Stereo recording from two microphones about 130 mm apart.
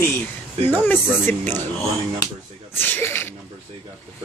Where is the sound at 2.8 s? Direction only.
15° left (ahead or behind).